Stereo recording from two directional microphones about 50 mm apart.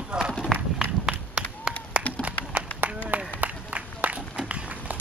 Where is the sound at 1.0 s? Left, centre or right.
Centre.